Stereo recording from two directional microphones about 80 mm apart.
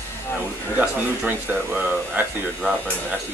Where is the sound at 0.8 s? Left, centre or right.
Centre.